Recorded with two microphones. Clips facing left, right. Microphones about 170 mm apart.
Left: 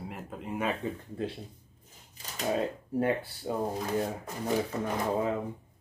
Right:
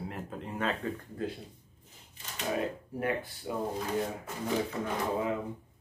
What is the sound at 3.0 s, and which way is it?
Speech, 30° left (ahead or behind).